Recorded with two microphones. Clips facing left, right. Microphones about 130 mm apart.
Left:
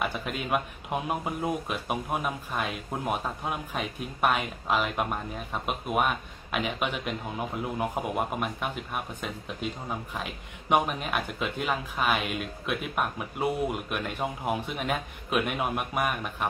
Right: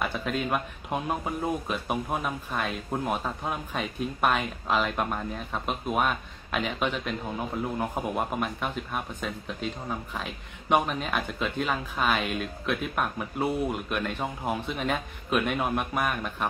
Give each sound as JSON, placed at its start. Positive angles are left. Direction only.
{"t": 0.0, "sound": "speech", "side_deg": 5}